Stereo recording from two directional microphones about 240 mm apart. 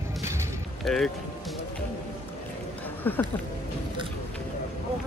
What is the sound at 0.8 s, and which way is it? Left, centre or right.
Speech, centre.